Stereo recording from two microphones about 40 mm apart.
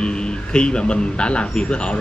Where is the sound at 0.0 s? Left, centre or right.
Left.